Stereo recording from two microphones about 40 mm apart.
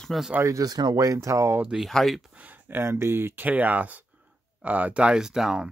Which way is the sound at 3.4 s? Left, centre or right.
Right.